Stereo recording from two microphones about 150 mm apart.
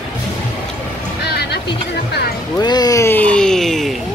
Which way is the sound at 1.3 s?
90° left.